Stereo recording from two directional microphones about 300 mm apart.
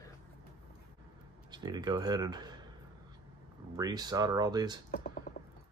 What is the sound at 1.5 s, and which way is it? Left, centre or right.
Speech, centre.